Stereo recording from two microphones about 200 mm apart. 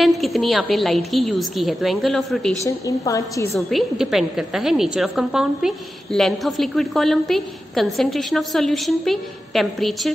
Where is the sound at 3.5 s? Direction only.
Centre (ahead or behind).